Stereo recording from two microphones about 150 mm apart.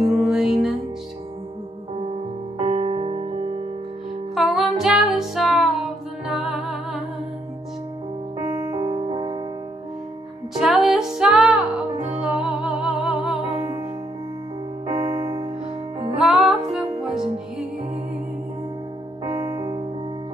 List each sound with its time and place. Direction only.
0.1 s music: 5° right (ahead or behind)
2.6 s music: 45° right (ahead or behind)
4.5 s music: 5° right (ahead or behind)
8.4 s music: 20° right (ahead or behind)
8.8 s music: 40° right (ahead or behind)
10.6 s music: centre (ahead or behind)
13.6 s music: 20° right (ahead or behind)
14.9 s music: 25° right (ahead or behind)
16.2 s music: 5° right (ahead or behind)
19.2 s keyboard: 25° right (ahead or behind)